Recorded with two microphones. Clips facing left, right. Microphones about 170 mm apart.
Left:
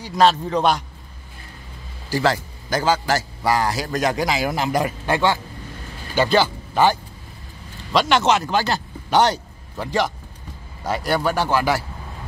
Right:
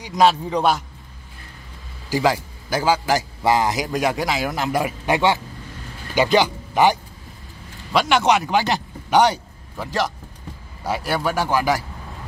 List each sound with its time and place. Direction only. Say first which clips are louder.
0.0 s a man's voice: even; 15° right (ahead or behind)
2.0 s a man's voice: right 1 dB; 10° right (ahead or behind)
5.0 s a man's voice: right 1 dB; 20° right (ahead or behind)